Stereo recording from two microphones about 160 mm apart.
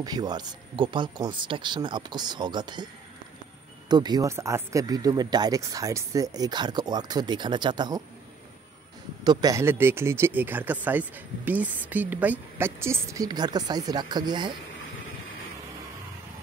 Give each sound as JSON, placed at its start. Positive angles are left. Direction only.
{"t": 0.0, "sound": "speech", "side_deg": -25}
{"t": 3.9, "sound": "speech", "side_deg": -25}
{"t": 9.2, "sound": "speech", "side_deg": -25}